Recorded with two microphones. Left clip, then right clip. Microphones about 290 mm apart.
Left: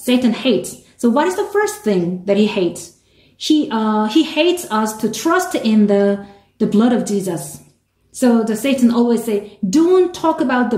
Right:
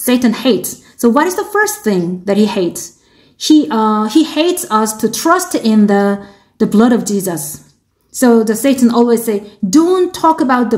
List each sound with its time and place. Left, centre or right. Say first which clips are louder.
0.0 s a woman's voice: right 3 dB; right